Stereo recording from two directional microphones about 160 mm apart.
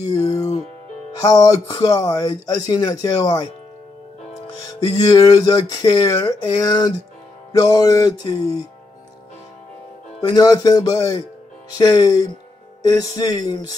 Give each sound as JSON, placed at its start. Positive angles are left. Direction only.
{"t": 0.1, "sound": "music", "side_deg": 20}
{"t": 1.2, "sound": "speech", "side_deg": 20}
{"t": 4.6, "sound": "speech", "side_deg": 25}
{"t": 10.2, "sound": "speech", "side_deg": 25}